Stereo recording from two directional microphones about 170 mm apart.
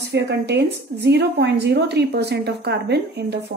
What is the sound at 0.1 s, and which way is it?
A woman's voice, 85° right.